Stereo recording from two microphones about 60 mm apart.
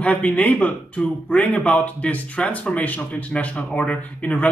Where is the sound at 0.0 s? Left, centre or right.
Left.